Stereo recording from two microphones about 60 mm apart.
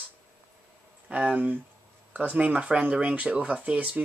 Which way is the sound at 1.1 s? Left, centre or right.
Right.